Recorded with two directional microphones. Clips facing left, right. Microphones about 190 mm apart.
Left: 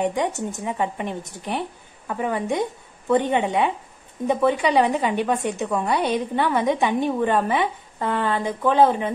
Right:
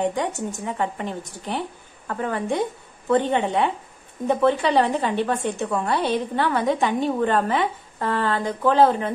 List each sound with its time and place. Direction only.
0.0 s a woman's voice: 20° left (ahead or behind)